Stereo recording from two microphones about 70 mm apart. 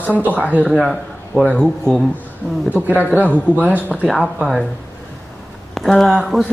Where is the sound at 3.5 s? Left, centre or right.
Right.